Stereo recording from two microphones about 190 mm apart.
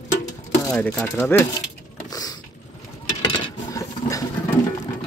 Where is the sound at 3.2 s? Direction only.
15° left (ahead or behind).